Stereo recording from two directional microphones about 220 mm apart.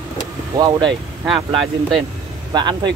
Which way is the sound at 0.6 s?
20° right (ahead or behind).